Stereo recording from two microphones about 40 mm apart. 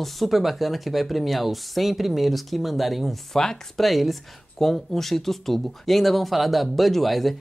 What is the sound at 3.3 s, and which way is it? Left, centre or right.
Speech, centre.